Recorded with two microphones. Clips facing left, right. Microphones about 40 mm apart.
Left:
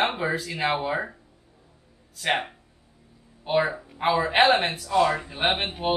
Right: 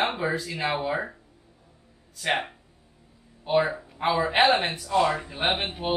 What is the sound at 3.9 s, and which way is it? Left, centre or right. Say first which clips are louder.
Speech: left 2 dB; centre.